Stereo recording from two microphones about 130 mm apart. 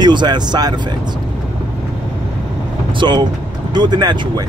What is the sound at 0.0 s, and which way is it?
Speech, 35° right (ahead or behind).